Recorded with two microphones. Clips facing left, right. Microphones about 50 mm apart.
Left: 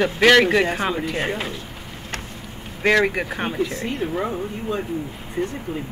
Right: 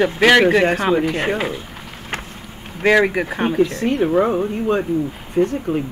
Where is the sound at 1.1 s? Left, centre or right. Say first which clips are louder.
Right 4 dB; right.